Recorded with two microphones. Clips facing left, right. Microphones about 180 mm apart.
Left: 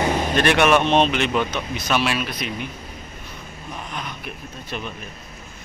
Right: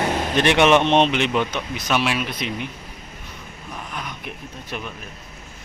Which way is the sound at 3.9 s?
10° right (ahead or behind).